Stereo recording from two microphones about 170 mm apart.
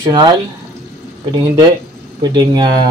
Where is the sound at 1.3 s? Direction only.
20° right (ahead or behind).